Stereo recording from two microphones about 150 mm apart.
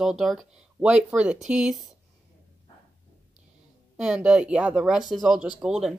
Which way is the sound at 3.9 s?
5° right (ahead or behind).